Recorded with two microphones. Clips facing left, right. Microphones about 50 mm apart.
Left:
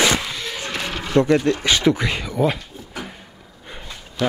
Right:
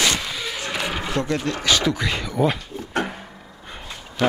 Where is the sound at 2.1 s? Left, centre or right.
Centre.